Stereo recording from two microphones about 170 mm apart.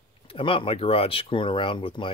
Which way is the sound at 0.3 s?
30° left (ahead or behind).